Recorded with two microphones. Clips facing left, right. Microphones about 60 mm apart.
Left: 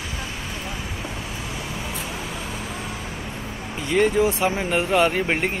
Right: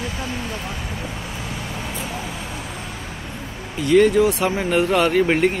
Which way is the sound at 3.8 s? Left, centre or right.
Centre.